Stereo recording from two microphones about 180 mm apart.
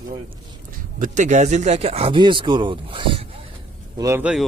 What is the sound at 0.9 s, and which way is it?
Speech, 45° right (ahead or behind).